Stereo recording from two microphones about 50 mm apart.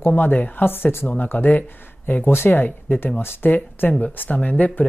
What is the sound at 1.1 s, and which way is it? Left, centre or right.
Speech, left.